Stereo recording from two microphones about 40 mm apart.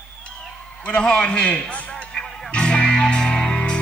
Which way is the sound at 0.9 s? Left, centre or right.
Left.